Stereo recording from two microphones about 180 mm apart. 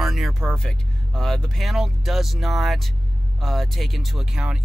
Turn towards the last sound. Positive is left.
turn(degrees=-5)  # may be behind; listen again after turning